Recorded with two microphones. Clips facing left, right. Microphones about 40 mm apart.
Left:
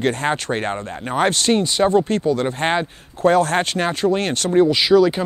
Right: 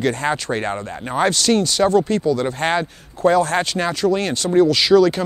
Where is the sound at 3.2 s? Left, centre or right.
Left.